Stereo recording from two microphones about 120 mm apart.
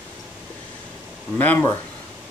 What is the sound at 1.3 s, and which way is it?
Speech, 15° left (ahead or behind).